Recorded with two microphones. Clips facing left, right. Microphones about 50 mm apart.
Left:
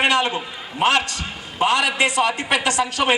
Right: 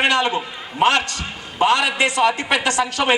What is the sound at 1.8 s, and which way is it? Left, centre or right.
Speech, centre.